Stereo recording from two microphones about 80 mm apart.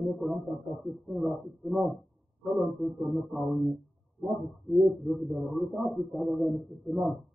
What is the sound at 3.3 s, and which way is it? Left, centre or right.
Speech, centre.